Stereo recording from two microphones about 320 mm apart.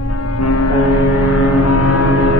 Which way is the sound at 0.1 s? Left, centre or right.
Left.